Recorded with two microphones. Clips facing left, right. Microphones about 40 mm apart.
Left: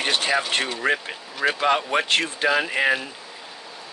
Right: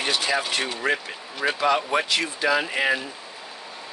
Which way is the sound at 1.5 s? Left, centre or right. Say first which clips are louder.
Even; left.